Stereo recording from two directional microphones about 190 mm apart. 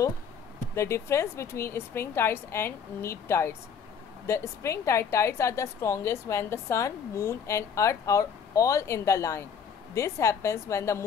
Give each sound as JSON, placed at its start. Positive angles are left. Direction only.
{"t": 0.7, "sound": "a woman's voice", "side_deg": 15}